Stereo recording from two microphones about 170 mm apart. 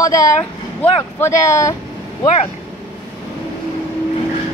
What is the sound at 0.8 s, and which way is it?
Speech, 15° left (ahead or behind).